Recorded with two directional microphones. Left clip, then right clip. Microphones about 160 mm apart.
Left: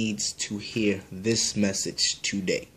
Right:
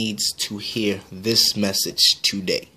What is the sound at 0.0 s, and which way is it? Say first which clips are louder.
Speech: right 6 dB; 55° right (ahead or behind).